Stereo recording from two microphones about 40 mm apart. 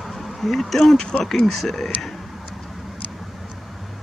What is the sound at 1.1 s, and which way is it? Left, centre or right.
Speech, left.